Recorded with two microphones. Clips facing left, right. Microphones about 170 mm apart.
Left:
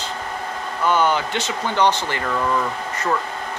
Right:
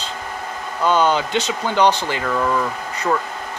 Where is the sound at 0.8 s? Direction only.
20° right (ahead or behind).